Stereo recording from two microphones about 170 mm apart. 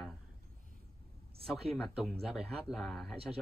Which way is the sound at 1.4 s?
Centre (ahead or behind).